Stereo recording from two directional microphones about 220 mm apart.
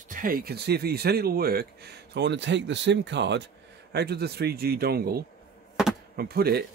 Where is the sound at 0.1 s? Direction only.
40° right (ahead or behind).